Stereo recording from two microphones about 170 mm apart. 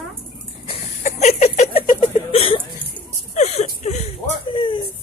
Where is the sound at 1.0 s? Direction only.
40° left (ahead or behind).